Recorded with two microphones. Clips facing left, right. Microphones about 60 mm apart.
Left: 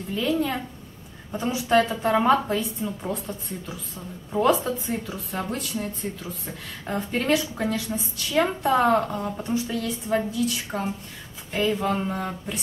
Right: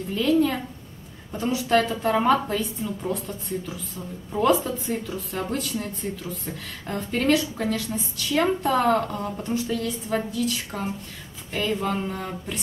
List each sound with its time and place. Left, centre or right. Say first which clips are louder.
0.1 s a woman's voice: right 3 dB; centre
6.9 s a woman's voice: right 1 dB; centre
10.7 s a woman's voice: left 1 dB; centre